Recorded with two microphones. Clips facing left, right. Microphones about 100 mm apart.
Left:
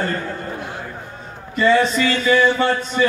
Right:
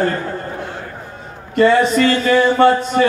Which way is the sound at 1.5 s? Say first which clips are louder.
Right 3 dB; 55° right (ahead or behind).